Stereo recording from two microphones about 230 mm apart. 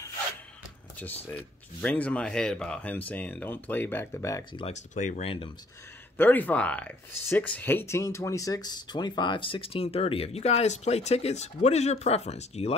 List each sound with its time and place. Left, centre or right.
0.9 s speech: centre; by 5.5 s left
6.1 s speech: centre; by 12.7 s left